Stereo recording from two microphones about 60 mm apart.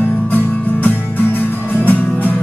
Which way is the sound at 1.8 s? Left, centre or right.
Left.